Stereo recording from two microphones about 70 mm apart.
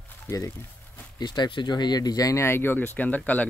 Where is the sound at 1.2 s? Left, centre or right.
Left.